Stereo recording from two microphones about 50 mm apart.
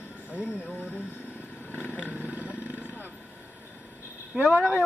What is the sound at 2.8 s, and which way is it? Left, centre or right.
Vehicle, left.